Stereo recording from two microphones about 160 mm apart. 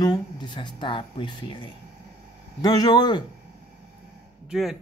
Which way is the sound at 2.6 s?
25° left (ahead or behind).